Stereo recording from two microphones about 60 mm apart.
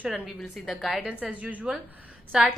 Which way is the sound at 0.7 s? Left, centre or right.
Centre.